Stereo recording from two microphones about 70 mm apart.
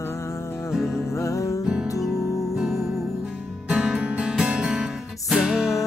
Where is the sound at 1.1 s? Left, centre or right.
Left.